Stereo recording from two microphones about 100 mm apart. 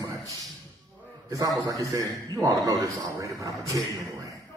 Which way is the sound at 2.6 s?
35° right (ahead or behind).